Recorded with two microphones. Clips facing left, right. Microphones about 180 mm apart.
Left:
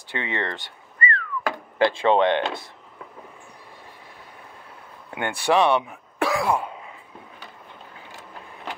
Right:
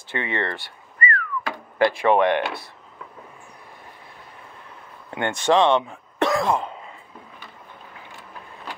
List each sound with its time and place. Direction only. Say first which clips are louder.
0.1 s speech: right 2 dB; 15° left (ahead or behind)
0.9 s whistling: right 1 dB; 30° left (ahead or behind)
1.8 s speech: right 1 dB; 25° left (ahead or behind)
5.1 s speech: right 2 dB; 10° left (ahead or behind)
6.1 s throat clearing: right 2 dB; 10° left (ahead or behind)